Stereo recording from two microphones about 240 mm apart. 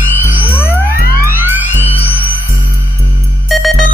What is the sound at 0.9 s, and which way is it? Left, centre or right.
Music, left.